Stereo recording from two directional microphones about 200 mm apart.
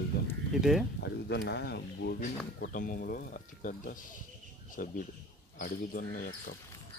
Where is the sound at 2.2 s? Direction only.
40° left (ahead or behind).